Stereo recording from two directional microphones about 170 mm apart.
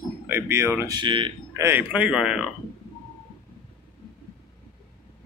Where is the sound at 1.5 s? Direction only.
15° right (ahead or behind).